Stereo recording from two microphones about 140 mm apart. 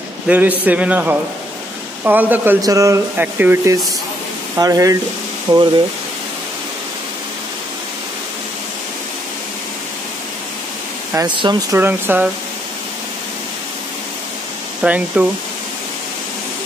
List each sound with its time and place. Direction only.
0.3 s a man's voice: 10° right (ahead or behind)
2.6 s speech: 25° right (ahead or behind)
3.2 s a man's voice: 15° right (ahead or behind); by 5.6 s 30° right (ahead or behind)
11.1 s speech: 35° right (ahead or behind)
11.7 s a man's voice: 15° right (ahead or behind)
14.8 s a man's voice: 10° right (ahead or behind)